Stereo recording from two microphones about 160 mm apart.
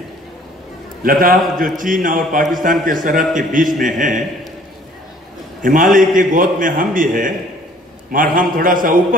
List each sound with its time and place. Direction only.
1.0 s a man's voice: 65° right (ahead or behind)
5.6 s a man's voice: 60° right (ahead or behind)